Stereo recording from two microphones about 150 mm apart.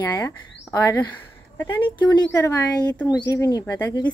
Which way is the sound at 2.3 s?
20° left (ahead or behind).